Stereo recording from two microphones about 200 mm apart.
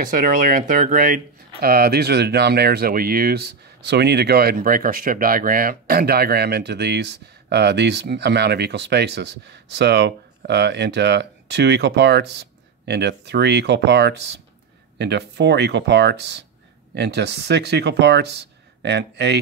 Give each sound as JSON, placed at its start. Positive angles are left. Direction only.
{"t": 0.1, "sound": "speech", "side_deg": -45}